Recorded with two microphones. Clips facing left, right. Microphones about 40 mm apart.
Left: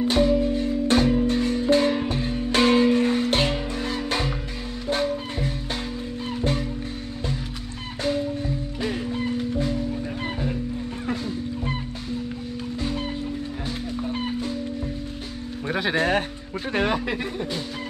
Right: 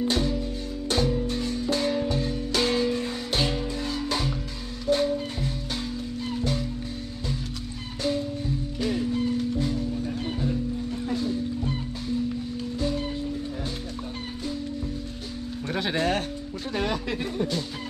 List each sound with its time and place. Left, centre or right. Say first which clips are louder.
0.0 s music: left 6 dB; left
0.4 s music: left 9 dB; left
8.8 s music: right 1 dB; left
15.7 s music: left 4 dB; centre
16.7 s a sound: left 5 dB; left